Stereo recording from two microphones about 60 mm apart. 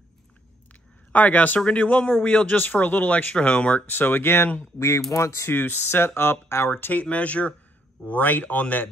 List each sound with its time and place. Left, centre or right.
1.1 s speech: left
4.6 s speech: left
5.5 s speech: left